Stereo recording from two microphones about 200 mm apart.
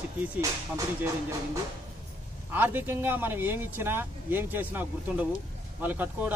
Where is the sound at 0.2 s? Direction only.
15° right (ahead or behind).